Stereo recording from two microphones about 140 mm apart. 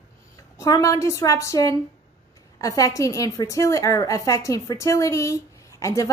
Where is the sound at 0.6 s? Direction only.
25° left (ahead or behind).